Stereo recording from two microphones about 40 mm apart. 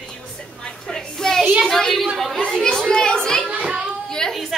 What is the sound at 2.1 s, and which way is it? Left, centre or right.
Chatter, centre.